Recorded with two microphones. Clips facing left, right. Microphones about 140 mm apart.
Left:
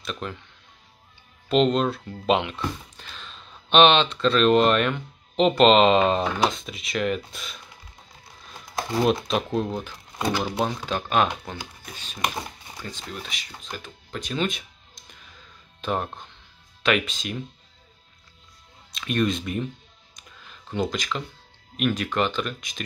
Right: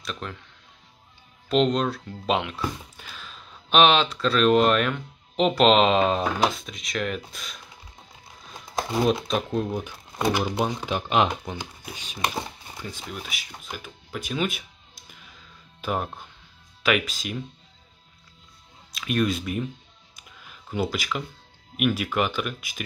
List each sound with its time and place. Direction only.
0.0 s speech: centre (ahead or behind)
1.5 s speech: centre (ahead or behind)
8.9 s speech: centre (ahead or behind)
9.8 s speech: 15° right (ahead or behind)
15.8 s speech: 5° right (ahead or behind)
18.9 s speech: 5° right (ahead or behind)
20.2 s a sound: 10° right (ahead or behind)
21.7 s speech: 10° right (ahead or behind)